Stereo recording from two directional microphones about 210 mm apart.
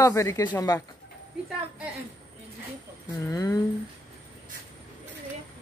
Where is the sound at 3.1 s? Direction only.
15° left (ahead or behind).